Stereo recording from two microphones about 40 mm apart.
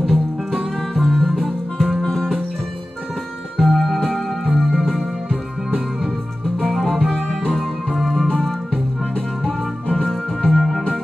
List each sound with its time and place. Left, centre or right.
0.0 s music: centre
2.0 s music: centre
3.5 s music: centre
6.6 s music: centre
7.2 s music: left
7.5 s music: centre
10.0 s music: centre